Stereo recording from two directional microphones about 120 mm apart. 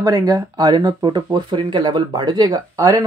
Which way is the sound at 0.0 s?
30° right (ahead or behind).